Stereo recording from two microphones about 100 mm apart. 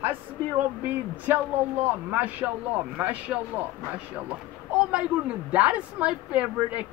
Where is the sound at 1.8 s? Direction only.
15° right (ahead or behind).